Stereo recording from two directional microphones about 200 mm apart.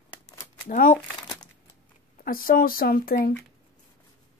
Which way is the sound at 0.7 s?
45° left (ahead or behind).